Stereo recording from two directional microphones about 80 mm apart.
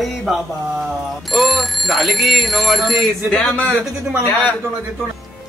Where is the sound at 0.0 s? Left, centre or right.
Centre.